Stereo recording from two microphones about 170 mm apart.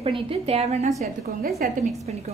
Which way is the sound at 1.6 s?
55° right (ahead or behind).